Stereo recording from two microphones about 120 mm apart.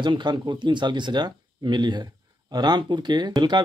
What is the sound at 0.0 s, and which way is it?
Speech, 40° right (ahead or behind).